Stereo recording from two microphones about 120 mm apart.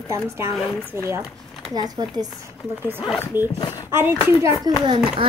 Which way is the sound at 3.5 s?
35° left (ahead or behind).